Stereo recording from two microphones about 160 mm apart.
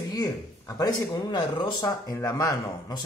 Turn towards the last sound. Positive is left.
turn(degrees=25)  # may be behind; listen again after turning